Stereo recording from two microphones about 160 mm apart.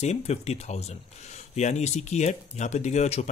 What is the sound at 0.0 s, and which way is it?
Speech, 40° left (ahead or behind).